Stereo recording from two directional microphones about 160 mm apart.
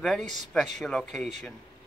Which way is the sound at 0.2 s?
50° right (ahead or behind).